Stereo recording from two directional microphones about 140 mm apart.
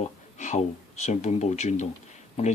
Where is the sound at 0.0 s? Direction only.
55° left (ahead or behind).